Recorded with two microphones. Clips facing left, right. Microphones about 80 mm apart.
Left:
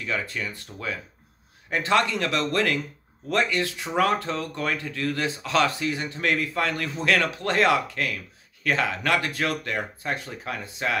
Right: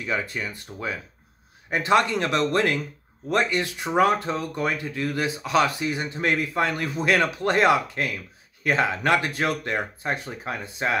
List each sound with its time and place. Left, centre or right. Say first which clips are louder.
0.0 s speech: right 2 dB; right